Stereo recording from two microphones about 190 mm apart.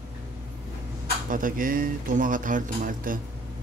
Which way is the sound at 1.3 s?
45° right (ahead or behind).